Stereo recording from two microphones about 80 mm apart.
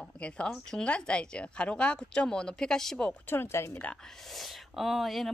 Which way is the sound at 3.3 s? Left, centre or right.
Left.